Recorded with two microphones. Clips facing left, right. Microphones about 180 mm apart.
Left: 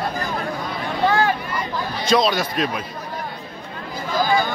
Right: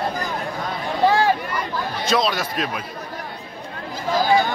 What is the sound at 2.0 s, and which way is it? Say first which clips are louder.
Speech: left 3 dB; 5° right (ahead or behind).